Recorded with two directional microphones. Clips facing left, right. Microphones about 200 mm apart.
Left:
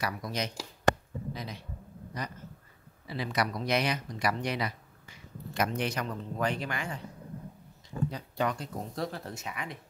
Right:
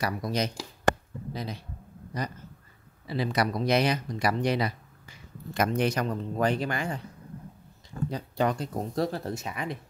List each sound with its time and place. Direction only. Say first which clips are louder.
0.0 s a man's voice: right 5 dB; 35° right (ahead or behind)
3.1 s speech: right 4 dB; 30° right (ahead or behind)
8.1 s speech: right 7 dB; 35° right (ahead or behind)